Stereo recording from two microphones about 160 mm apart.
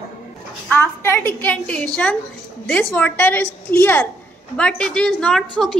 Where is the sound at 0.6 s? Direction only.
10° left (ahead or behind).